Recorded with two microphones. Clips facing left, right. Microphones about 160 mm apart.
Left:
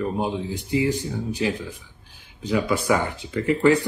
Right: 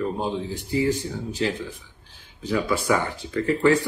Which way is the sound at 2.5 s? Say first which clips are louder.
Left 1 dB; 15° left (ahead or behind).